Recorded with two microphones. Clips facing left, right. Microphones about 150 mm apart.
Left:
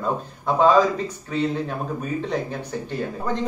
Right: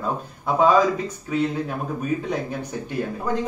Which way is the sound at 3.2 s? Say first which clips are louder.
Even; 10° right (ahead or behind).